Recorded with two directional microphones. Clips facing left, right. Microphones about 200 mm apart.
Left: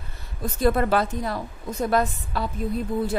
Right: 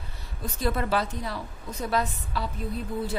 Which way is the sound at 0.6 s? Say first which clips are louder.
Left 6 dB; 50° left (ahead or behind).